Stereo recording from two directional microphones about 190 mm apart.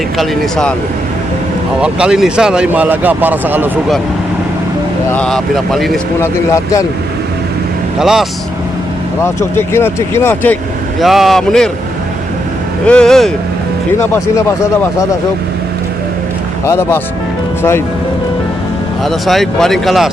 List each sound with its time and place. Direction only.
0.2 s speech: 5° left (ahead or behind)
1.8 s speech: 5° right (ahead or behind)
5.1 s speech: 5° left (ahead or behind)
6.2 s speech: 15° left (ahead or behind)
8.0 s speech: centre (ahead or behind)
9.2 s speech: 15° left (ahead or behind)
12.8 s speech: 5° left (ahead or behind)
13.9 s speech: 15° left (ahead or behind)
16.6 s speech: 15° left (ahead or behind)
19.0 s speech: centre (ahead or behind)